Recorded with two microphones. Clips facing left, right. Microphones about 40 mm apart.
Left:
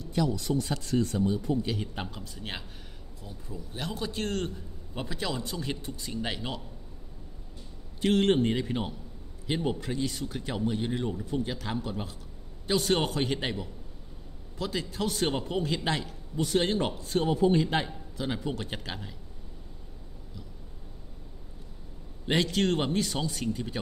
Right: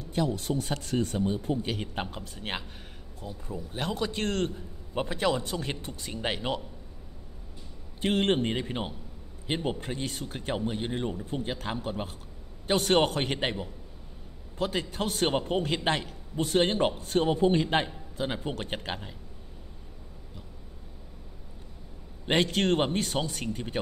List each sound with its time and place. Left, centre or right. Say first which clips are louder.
0.3 s speech: left 1 dB; right
8.0 s speech: left 2 dB; right
11.3 s speech: left 1 dB; right
22.3 s speech: right 1 dB; right